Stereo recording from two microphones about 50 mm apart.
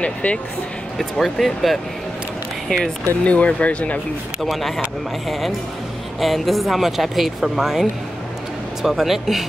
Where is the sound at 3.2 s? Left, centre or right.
Left.